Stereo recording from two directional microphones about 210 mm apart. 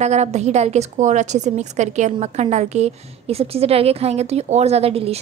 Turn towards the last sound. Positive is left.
turn(degrees=-30)  # may be behind; listen again after turning